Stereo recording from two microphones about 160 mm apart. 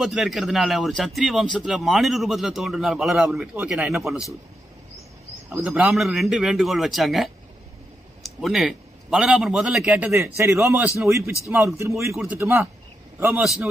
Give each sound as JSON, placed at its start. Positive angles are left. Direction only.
{"t": 0.0, "sound": "a man's voice", "side_deg": 0}
{"t": 5.6, "sound": "a man's voice", "side_deg": 0}